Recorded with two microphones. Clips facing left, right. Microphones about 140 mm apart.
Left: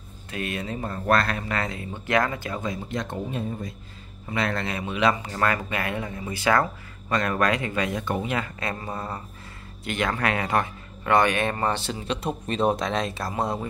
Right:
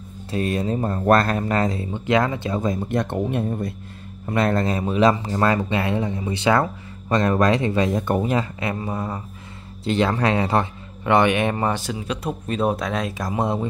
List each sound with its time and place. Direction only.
0.3 s speech: 35° right (ahead or behind)
1.9 s speech: 20° right (ahead or behind)
2.6 s speech: 50° right (ahead or behind)
4.3 s speech: 45° right (ahead or behind)
5.3 s speech: 25° right (ahead or behind)
8.0 s speech: 45° right (ahead or behind)
8.5 s speech: 20° right (ahead or behind)
9.8 s speech: 30° right (ahead or behind); by 13.3 s 10° right (ahead or behind)
13.3 s speech: 20° right (ahead or behind)